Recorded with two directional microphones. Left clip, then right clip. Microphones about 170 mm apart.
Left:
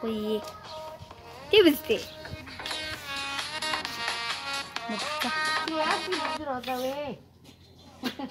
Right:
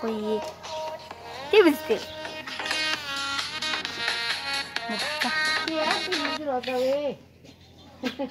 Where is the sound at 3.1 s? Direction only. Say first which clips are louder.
Right 4 dB; 5° right (ahead or behind).